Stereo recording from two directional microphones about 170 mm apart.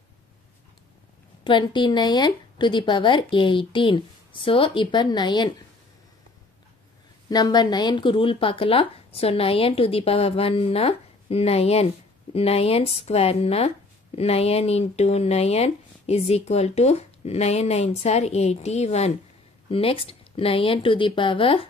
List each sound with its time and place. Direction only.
1.4 s a woman's voice: 25° left (ahead or behind)
7.2 s speech: 25° left (ahead or behind)